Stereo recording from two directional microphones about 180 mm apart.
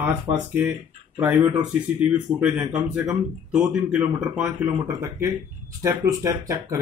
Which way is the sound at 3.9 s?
5° right (ahead or behind).